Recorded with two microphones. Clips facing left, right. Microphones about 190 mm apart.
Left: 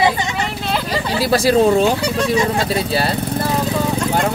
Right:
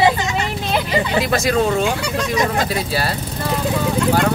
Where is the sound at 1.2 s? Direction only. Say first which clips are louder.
Left 6 dB; 30° left (ahead or behind).